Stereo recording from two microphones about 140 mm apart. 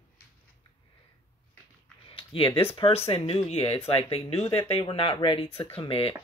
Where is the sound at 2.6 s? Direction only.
40° left (ahead or behind).